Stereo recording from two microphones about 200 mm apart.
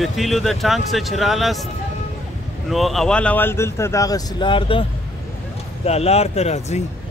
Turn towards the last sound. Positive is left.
turn(degrees=35)  # may be behind; listen again after turning